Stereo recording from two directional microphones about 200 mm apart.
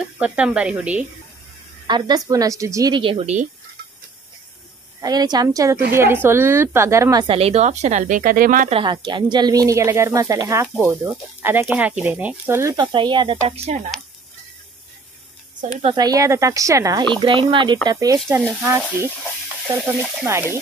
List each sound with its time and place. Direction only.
0.0 s speech: 5° right (ahead or behind)
1.9 s a woman's voice: 20° right (ahead or behind)
5.0 s a woman's voice: 20° right (ahead or behind); by 8.7 s 40° right (ahead or behind)
8.7 s speech: 25° right (ahead or behind)
15.8 s a woman's voice: 20° right (ahead or behind)